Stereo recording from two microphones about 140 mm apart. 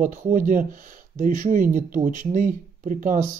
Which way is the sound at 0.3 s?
70° right (ahead or behind).